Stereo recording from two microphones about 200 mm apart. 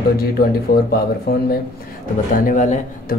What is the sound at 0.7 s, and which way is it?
Speech, 50° left (ahead or behind).